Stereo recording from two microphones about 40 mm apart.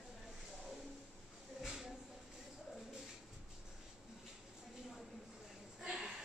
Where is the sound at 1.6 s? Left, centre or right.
Centre.